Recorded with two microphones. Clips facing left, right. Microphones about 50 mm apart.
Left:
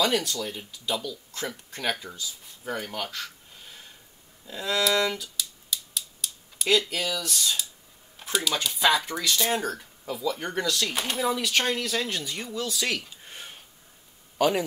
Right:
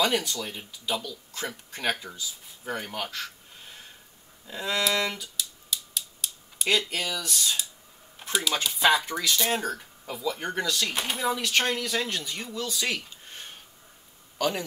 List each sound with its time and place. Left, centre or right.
0.0 s speech: centre
4.5 s speech: centre
5.4 s scissors: centre
6.9 s speech: centre
13.3 s a sound: centre
14.4 s a man's voice: centre